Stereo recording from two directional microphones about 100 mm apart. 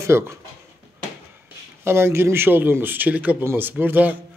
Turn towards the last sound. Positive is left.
turn(degrees=-15)  # may be behind; listen again after turning